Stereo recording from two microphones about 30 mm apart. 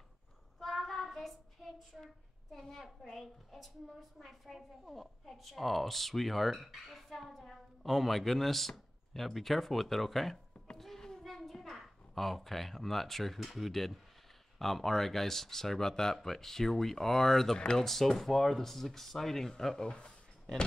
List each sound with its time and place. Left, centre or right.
0.6 s child singing: centre
1.9 s speech: centre
2.5 s speech: centre
5.2 s speech: centre
10.8 s a sound: centre
11.2 s a child's voice: centre
19.8 s speech: left